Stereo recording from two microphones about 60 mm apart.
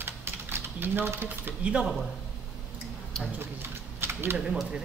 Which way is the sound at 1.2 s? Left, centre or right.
Right.